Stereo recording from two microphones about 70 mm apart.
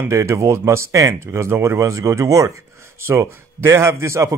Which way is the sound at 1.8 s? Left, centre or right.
Right.